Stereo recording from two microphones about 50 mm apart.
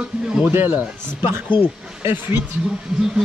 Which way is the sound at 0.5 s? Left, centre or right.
Right.